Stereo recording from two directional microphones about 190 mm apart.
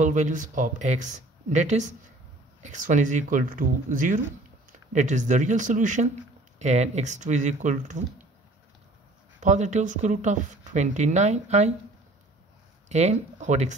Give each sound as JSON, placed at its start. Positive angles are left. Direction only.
{"t": 0.0, "sound": "speech", "side_deg": -40}
{"t": 9.4, "sound": "speech", "side_deg": -40}
{"t": 12.8, "sound": "speech", "side_deg": -35}